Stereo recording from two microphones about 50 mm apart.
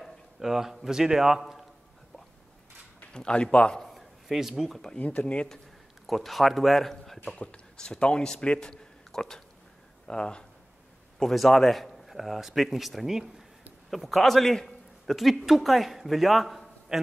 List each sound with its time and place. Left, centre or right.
0.0 s a man's voice: centre
3.1 s speech: centre
3.8 s a sound: centre
4.9 s speech: left
6.0 s a man's voice: centre
7.3 s a man's voice: left; by 17.0 s centre